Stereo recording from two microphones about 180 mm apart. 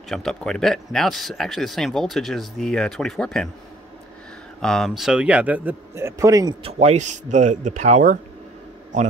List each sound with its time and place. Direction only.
0.1 s speech: 5° left (ahead or behind)
4.6 s speech: 5° left (ahead or behind); by 6.5 s 20° right (ahead or behind)
6.6 s speech: 35° right (ahead or behind)